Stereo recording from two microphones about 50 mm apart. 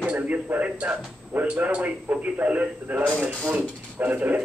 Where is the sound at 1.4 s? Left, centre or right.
Right.